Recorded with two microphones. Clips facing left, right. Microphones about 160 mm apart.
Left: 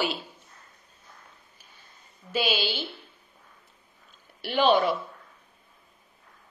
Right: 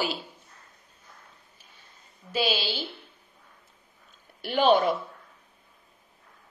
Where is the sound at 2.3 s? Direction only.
35° right (ahead or behind).